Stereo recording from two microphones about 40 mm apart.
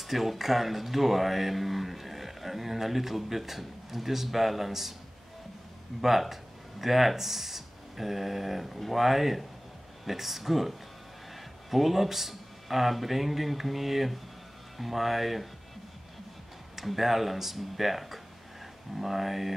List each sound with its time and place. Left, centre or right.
0.0 s speech: centre
5.9 s speech: centre
11.7 s speech: centre
16.7 s speech: centre